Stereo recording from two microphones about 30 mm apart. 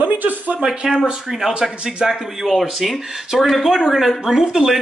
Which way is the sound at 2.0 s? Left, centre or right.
Right.